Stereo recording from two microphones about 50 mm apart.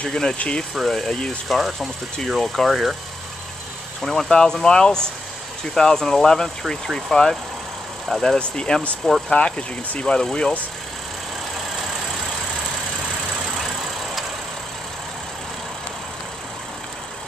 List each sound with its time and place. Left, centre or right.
0.0 s speech: centre
0.8 s speech: centre
4.0 s speech: centre
8.4 s speech: centre